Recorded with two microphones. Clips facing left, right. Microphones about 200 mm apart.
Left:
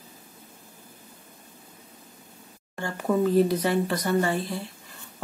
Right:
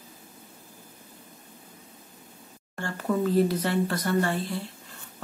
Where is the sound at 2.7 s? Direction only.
15° left (ahead or behind).